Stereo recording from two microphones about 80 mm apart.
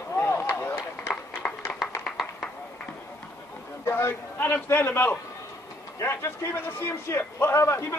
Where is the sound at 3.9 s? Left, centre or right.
Left.